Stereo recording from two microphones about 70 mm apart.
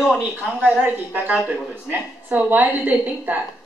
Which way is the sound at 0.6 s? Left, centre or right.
Centre.